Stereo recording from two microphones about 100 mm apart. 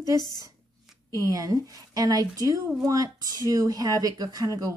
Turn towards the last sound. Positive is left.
turn(degrees=-35)  # may be behind; listen again after turning